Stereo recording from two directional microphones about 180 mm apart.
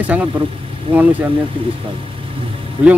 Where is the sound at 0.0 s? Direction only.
10° right (ahead or behind).